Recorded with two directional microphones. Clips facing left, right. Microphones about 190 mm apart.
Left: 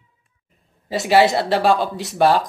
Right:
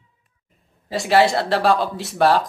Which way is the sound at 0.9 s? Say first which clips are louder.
Left 1 dB; centre (ahead or behind).